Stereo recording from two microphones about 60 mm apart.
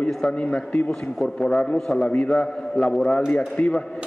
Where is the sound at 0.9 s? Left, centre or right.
Centre.